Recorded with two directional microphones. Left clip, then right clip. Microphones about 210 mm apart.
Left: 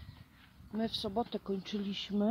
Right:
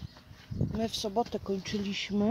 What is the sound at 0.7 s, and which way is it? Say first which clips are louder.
Speech: right 4 dB; 20° right (ahead or behind).